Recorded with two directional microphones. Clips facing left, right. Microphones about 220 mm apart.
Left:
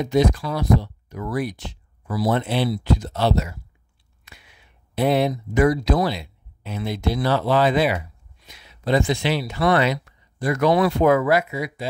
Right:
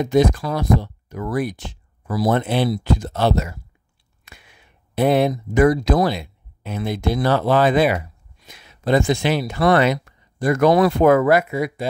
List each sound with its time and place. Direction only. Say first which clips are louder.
0.0 s speech: right 3 dB; 50° right (ahead or behind)